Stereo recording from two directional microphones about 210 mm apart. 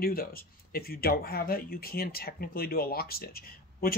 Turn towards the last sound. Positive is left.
turn(degrees=45)  # may be behind; listen again after turning